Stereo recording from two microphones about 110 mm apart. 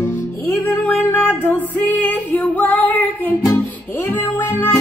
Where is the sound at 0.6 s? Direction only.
20° left (ahead or behind).